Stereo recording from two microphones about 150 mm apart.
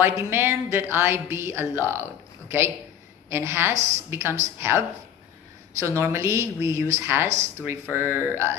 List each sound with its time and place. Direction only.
0.0 s speech: 15° right (ahead or behind)
3.7 s a woman's voice: 50° right (ahead or behind)
4.1 s a woman's voice: 15° right (ahead or behind)